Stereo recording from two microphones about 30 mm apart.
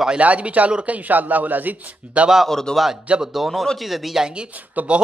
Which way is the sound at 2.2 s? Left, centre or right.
Right.